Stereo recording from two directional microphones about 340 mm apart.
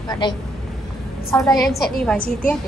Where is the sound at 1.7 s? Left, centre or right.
Left.